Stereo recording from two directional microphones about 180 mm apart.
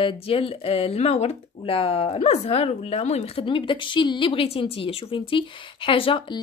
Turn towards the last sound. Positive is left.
turn(degrees=30)  # may be behind; listen again after turning